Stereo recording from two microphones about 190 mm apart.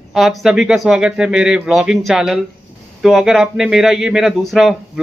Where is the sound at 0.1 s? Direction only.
Centre (ahead or behind).